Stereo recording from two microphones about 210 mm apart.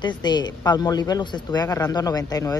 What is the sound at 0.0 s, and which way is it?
Speech, 20° left (ahead or behind).